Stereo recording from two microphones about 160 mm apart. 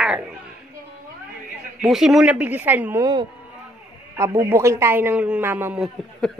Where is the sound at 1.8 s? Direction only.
Centre (ahead or behind).